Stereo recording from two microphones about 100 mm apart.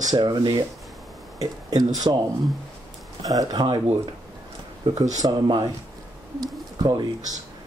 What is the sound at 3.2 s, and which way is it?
Speech, 35° right (ahead or behind).